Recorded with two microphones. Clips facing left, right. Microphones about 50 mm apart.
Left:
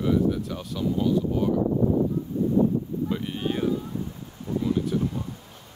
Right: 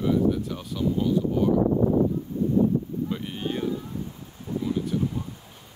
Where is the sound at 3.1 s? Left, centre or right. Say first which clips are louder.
Left 2 dB; centre.